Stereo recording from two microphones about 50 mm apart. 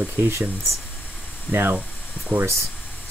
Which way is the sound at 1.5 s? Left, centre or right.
Right.